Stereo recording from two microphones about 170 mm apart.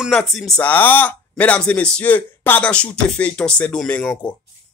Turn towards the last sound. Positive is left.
turn(degrees=5)  # may be behind; listen again after turning